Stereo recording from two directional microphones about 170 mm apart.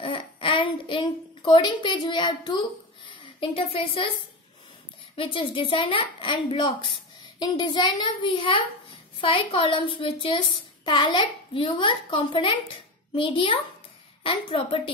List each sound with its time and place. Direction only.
0.0 s a child's voice: 30° left (ahead or behind)
5.1 s a child's voice: 30° left (ahead or behind)